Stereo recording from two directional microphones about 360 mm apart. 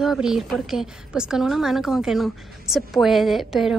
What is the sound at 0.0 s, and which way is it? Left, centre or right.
Speech, centre.